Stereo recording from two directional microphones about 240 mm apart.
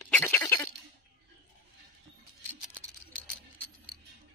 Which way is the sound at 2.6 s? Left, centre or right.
Centre.